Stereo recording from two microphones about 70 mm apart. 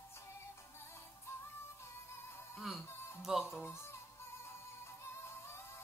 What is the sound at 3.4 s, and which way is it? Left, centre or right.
Speech, left.